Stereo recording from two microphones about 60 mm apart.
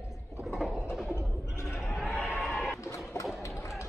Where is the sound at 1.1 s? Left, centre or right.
Left.